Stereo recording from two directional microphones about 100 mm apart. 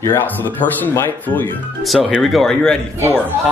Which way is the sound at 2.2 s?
Centre (ahead or behind).